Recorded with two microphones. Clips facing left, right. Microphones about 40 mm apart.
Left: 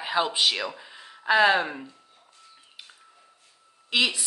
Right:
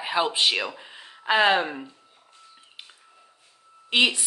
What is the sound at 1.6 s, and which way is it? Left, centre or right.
Speech, centre.